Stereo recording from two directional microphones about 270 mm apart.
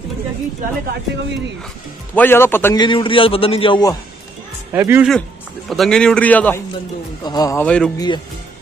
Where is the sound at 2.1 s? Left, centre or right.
Centre.